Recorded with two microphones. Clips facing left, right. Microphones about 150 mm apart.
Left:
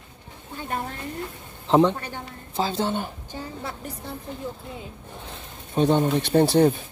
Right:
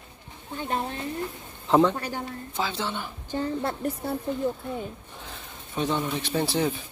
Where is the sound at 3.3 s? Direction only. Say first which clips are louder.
Right 6 dB; 55° right (ahead or behind).